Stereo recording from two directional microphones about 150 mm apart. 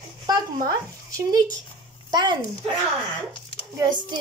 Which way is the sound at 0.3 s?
25° right (ahead or behind).